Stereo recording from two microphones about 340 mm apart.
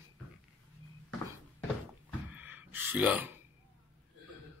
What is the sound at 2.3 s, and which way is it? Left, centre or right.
Gasp, centre.